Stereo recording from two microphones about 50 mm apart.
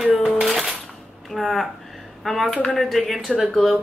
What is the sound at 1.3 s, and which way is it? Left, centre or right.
Speech, centre.